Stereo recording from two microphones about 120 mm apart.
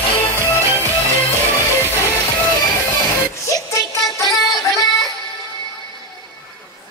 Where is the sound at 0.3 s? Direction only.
20° left (ahead or behind).